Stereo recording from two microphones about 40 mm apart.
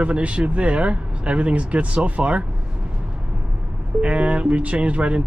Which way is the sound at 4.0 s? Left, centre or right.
Right.